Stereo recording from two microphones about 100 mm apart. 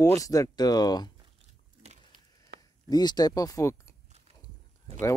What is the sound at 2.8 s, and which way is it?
Speech, 40° left (ahead or behind).